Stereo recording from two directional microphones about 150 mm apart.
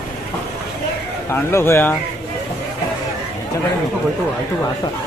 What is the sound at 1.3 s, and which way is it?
Speech, 15° left (ahead or behind).